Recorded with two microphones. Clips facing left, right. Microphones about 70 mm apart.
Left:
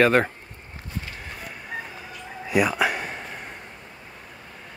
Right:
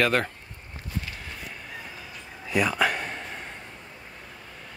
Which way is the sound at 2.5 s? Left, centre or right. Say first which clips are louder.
Left 2 dB; centre.